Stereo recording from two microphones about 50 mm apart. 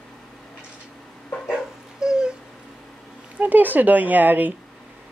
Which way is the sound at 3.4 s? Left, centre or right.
Right.